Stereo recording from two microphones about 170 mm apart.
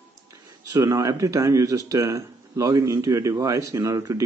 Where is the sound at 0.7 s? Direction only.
20° right (ahead or behind).